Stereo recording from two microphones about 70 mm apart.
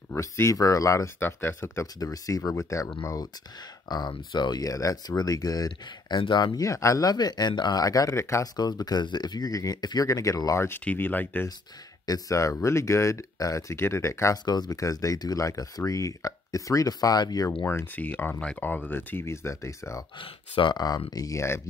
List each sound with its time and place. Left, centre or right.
0.1 s speech: left
1.2 s speech: left
3.9 s speech: left
6.6 s speech: left
8.2 s speech: left
8.5 s speech: left
10.0 s speech: left
10.8 s speech: left
12.1 s speech: left
14.3 s speech: left
17.9 s speech: left
20.6 s speech: left